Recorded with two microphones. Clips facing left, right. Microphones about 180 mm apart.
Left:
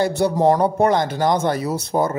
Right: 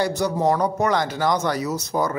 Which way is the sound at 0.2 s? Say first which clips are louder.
Left 6 dB; 30° left (ahead or behind).